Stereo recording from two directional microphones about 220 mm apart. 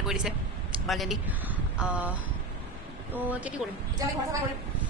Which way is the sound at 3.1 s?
10° right (ahead or behind).